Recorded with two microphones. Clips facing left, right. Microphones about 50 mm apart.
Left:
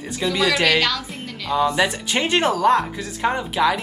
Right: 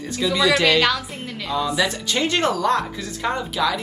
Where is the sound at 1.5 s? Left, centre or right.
Left.